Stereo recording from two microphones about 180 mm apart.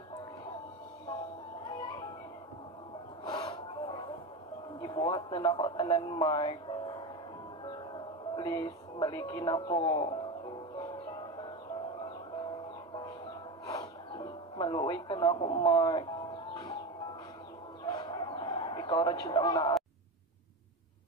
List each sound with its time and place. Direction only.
3.3 s snort: 30° left (ahead or behind)
4.8 s a sound: 30° left (ahead or behind)
5.4 s speech: 25° left (ahead or behind)
10.8 s music: 25° left (ahead or behind)
13.7 s music: 25° left (ahead or behind)
17.8 s chicken: 25° left (ahead or behind)